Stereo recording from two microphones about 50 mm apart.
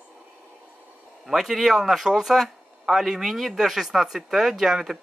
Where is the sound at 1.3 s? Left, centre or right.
Centre.